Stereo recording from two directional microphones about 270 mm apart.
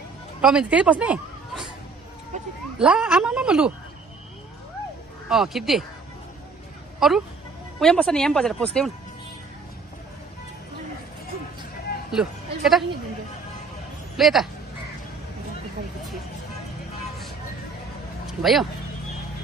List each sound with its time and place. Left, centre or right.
0.4 s speech: centre
2.3 s a sound: right
2.8 s speech: centre
5.3 s speech: centre
7.0 s speech: centre
12.1 s speech: centre
14.1 s speech: centre
18.2 s speech: centre